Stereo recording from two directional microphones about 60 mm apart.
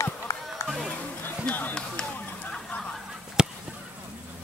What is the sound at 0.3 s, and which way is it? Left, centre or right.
Run, left.